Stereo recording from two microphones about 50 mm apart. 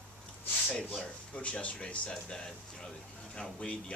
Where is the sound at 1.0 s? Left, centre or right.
Left.